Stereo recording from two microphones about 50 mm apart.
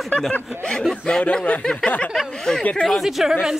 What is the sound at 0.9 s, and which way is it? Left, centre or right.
Speech, left.